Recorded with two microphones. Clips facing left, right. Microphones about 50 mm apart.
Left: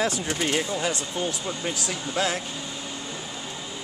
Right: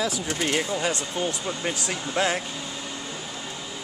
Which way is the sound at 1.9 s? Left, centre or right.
Right.